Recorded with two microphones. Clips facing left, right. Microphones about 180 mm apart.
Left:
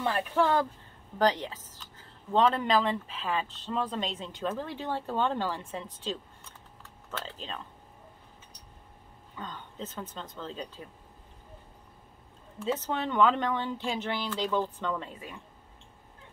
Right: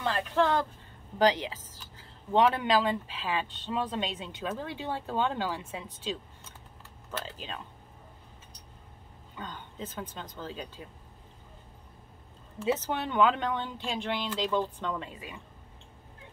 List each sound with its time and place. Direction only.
0.0 s speech: 10° left (ahead or behind)
2.3 s speech: 5° right (ahead or behind)
7.1 s speech: 5° right (ahead or behind)
9.3 s speech: 5° right (ahead or behind)
12.6 s speech: 5° right (ahead or behind)